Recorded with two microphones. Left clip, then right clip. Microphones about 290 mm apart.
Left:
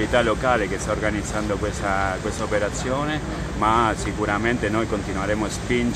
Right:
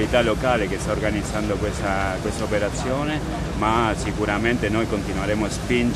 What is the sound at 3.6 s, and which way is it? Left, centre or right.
Speech, centre.